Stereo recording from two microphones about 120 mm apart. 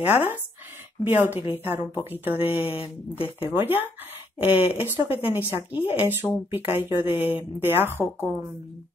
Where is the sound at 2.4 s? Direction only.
50° left (ahead or behind).